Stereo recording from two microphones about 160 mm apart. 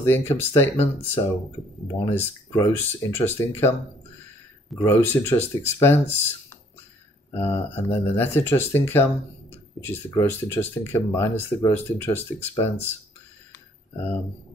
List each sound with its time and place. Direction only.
0.0 s speech: 15° left (ahead or behind)
4.7 s speech: 15° left (ahead or behind)
7.3 s speech: 15° left (ahead or behind)